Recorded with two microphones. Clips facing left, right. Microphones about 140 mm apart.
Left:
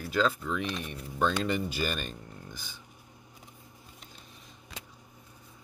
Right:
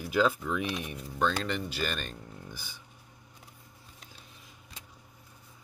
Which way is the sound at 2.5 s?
10° right (ahead or behind).